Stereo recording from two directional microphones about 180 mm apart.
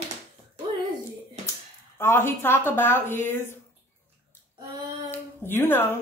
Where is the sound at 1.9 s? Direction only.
10° left (ahead or behind).